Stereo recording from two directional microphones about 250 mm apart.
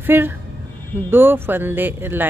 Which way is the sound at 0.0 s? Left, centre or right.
Centre.